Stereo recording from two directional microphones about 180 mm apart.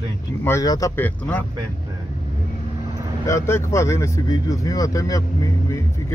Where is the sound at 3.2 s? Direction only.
15° left (ahead or behind).